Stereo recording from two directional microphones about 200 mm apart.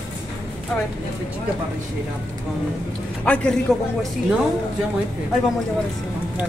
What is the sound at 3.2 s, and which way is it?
Speech, 5° left (ahead or behind).